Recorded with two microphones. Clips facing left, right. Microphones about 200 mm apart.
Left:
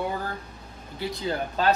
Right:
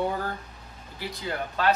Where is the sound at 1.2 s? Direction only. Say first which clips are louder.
Left 1 dB; 30° left (ahead or behind).